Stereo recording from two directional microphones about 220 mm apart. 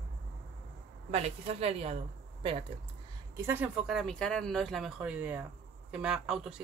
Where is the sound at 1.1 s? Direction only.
30° right (ahead or behind).